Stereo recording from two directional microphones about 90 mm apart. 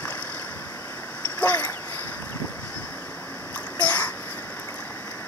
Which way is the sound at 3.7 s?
15° left (ahead or behind).